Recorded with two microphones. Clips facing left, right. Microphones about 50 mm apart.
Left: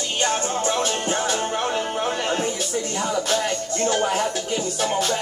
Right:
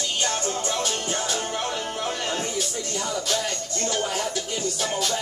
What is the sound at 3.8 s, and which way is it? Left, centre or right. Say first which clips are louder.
Music: left 5 dB; left.